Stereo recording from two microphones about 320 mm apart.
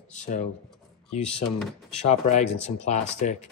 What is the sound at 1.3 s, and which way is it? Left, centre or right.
Speech, centre.